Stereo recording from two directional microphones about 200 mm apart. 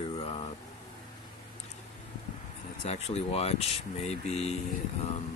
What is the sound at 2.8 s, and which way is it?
Speech, 35° left (ahead or behind).